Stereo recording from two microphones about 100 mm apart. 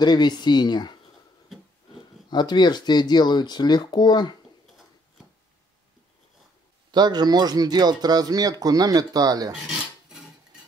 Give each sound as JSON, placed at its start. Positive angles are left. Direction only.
{"t": 0.0, "sound": "speech", "side_deg": 45}
{"t": 2.2, "sound": "speech", "side_deg": 45}
{"t": 6.9, "sound": "speech", "side_deg": -45}